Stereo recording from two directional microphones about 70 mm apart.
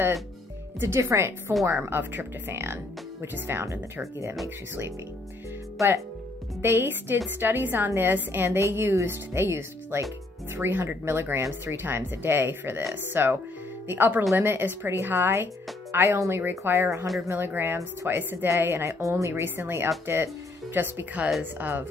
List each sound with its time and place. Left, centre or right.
0.7 s a woman's voice: right
6.6 s a woman's voice: right
17.3 s a woman's voice: right
19.4 s a woman's voice: right